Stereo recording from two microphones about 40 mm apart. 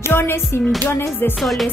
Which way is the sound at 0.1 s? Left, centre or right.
Left.